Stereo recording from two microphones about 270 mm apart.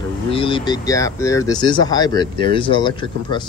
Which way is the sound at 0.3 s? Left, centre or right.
Centre.